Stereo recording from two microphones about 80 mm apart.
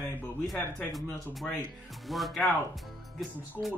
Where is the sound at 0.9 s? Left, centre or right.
Centre.